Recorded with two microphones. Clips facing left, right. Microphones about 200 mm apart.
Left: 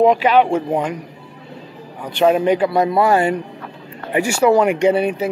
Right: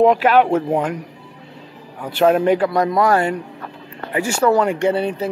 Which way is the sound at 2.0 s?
Centre (ahead or behind).